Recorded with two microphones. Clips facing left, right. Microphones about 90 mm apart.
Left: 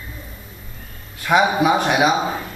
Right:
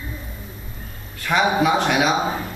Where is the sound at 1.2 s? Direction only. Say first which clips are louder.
Left 2 dB; 10° left (ahead or behind).